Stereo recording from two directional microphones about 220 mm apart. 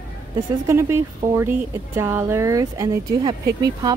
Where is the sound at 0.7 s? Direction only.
10° right (ahead or behind).